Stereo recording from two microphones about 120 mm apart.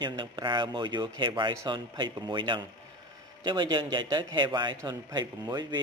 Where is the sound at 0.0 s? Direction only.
40° right (ahead or behind).